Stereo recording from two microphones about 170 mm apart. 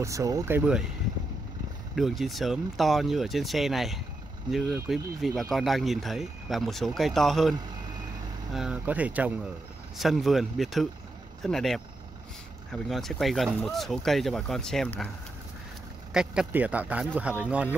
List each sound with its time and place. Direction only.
0.0 s speech: 20° right (ahead or behind)
2.0 s speech: centre (ahead or behind)
8.5 s speech: 5° right (ahead or behind)
12.8 s speech: centre (ahead or behind)
16.1 s speech: 5° right (ahead or behind)